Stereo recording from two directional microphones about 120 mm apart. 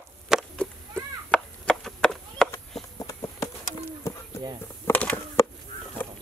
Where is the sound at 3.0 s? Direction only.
25° left (ahead or behind).